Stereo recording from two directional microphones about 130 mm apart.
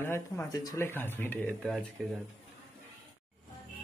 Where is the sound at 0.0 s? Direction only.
20° left (ahead or behind).